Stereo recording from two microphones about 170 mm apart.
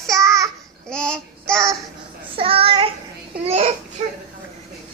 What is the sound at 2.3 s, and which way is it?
Child singing, 35° right (ahead or behind).